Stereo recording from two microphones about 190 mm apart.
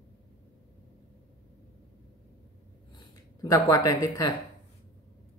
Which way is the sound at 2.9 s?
20° left (ahead or behind).